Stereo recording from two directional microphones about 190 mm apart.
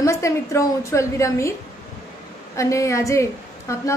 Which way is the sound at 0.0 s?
15° left (ahead or behind).